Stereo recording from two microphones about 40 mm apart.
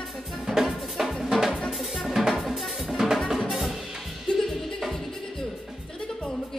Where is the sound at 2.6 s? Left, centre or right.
Centre.